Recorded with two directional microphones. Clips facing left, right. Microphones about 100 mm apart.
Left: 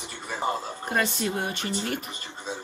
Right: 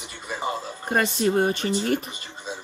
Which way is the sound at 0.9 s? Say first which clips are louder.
Right 5 dB; 40° right (ahead or behind).